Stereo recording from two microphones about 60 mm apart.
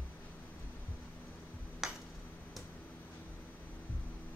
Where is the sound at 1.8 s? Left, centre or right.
Centre.